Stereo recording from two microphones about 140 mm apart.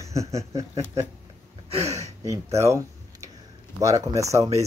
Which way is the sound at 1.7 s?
50° right (ahead or behind).